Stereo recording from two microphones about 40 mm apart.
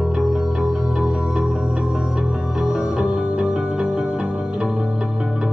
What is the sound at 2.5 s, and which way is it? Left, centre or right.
Music, centre.